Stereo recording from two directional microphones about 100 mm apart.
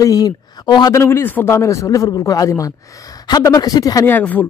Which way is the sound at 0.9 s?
25° left (ahead or behind).